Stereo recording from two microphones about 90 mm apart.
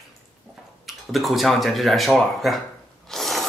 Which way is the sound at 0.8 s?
Centre (ahead or behind).